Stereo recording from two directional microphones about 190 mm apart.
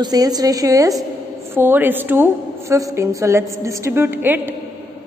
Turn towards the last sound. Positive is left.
turn(degrees=-10)  # may be behind; listen again after turning